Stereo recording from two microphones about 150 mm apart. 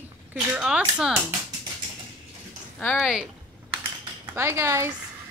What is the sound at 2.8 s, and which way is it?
Speech, 5° left (ahead or behind).